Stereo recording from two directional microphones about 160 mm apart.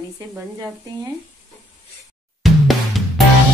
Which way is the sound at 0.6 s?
20° right (ahead or behind).